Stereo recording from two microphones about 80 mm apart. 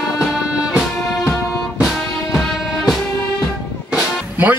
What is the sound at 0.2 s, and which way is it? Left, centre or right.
Music, centre.